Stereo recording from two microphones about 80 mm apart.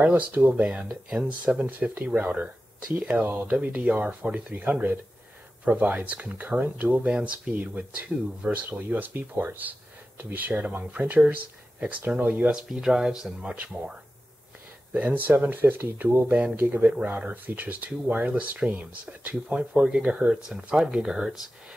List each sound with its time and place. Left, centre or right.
0.0 s speech: right
12.5 s speech: centre
15.0 s speech: right; by 21.4 s centre